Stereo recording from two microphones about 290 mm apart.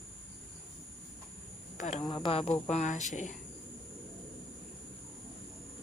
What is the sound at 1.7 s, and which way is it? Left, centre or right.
Speech, left.